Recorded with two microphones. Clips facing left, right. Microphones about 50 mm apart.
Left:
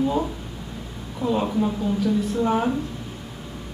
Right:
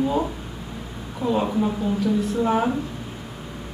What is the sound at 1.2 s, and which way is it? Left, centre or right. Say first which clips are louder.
Speech: right 1 dB; centre.